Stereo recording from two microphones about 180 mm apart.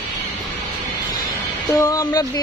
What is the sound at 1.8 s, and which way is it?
Speech, 20° left (ahead or behind).